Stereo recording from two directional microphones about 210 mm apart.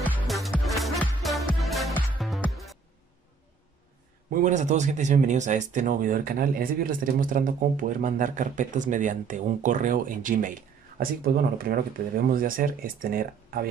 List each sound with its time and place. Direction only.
0.0 s music: centre (ahead or behind)
4.3 s speech: 35° right (ahead or behind)